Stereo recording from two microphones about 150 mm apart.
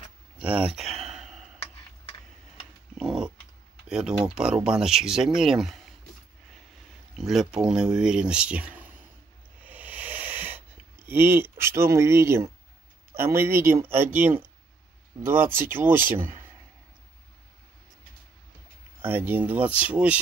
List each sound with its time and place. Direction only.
0.4 s a sound: 5° right (ahead or behind)
3.0 s dog: 5° right (ahead or behind)
3.9 s speech: 5° right (ahead or behind)
7.2 s speech: centre (ahead or behind)
9.6 s hiss: 10° right (ahead or behind)
11.1 s speech: 15° right (ahead or behind)
18.9 s speech: 15° right (ahead or behind)